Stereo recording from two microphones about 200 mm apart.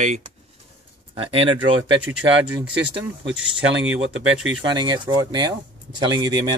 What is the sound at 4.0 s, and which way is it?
Speech, 70° right (ahead or behind).